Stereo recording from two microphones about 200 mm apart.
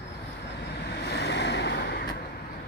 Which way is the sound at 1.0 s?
60° left (ahead or behind).